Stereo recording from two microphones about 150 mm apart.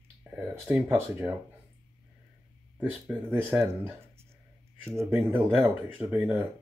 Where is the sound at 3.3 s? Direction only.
15° right (ahead or behind).